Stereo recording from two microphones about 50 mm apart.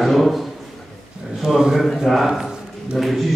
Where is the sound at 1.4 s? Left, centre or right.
Centre.